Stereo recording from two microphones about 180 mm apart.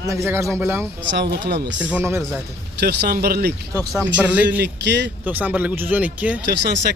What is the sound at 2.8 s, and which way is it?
Speech, 65° right (ahead or behind).